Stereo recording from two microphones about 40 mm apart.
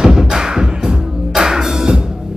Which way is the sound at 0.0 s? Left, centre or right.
Centre.